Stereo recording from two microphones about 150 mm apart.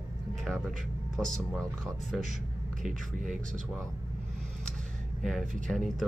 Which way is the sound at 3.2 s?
55° right (ahead or behind).